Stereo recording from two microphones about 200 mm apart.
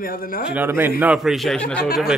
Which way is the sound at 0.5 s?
10° right (ahead or behind).